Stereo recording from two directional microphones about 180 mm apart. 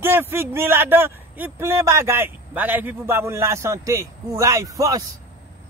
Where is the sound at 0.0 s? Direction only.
15° right (ahead or behind).